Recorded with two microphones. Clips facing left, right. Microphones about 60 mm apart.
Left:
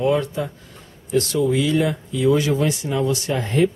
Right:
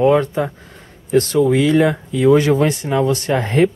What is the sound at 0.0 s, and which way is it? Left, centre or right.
Speech, right.